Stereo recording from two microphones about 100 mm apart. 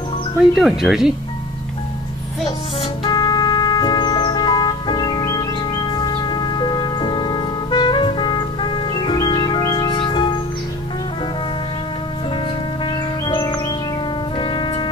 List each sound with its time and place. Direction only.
0.6 s speech: 5° right (ahead or behind)
3.1 s music: 45° left (ahead or behind)
14.4 s music: 50° left (ahead or behind)